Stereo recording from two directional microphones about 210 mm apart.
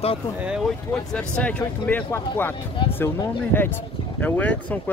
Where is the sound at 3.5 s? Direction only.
10° left (ahead or behind).